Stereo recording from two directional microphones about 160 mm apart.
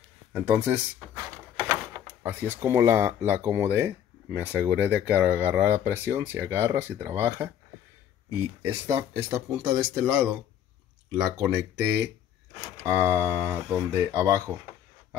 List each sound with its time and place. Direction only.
0.3 s speech: 5° right (ahead or behind)
2.2 s speech: 15° right (ahead or behind)
8.6 s speech: 20° right (ahead or behind)
11.3 s speech: 15° right (ahead or behind)